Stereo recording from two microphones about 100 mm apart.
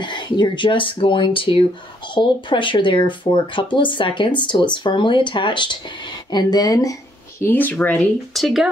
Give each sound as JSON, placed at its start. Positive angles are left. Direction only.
{"t": 0.0, "sound": "speech", "side_deg": 50}
{"t": 6.3, "sound": "speech", "side_deg": 40}
{"t": 7.4, "sound": "speech", "side_deg": 15}
{"t": 8.4, "sound": "speech", "side_deg": 0}